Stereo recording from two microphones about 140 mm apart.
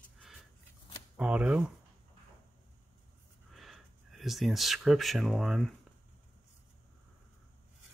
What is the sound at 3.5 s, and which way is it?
Speech, centre (ahead or behind).